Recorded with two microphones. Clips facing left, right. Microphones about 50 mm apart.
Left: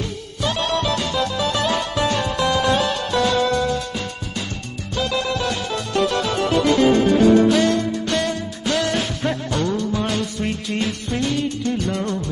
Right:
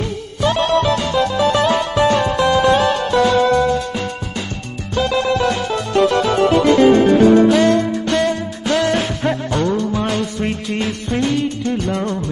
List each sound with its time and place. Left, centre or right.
0.4 s music: right
4.9 s music: right